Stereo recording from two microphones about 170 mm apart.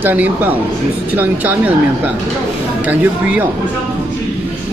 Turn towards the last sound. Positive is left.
turn(degrees=-5)  # may be behind; listen again after turning